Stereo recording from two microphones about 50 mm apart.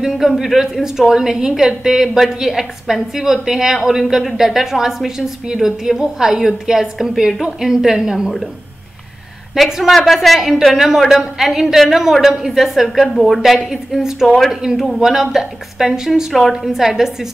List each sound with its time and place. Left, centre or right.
0.0 s a woman's voice: centre
9.6 s a woman's voice: centre